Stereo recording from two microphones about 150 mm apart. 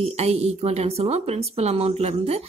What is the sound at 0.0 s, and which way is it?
Speech, 45° right (ahead or behind).